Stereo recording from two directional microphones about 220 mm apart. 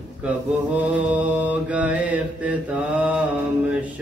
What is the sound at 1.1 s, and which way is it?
Mantra, 5° right (ahead or behind).